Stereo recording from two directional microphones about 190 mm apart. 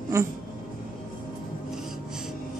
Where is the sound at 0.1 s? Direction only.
15° right (ahead or behind).